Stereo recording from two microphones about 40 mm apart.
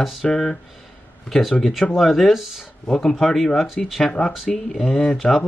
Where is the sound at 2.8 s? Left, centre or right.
Centre.